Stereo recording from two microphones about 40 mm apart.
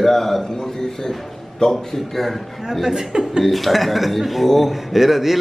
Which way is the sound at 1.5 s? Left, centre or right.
Centre.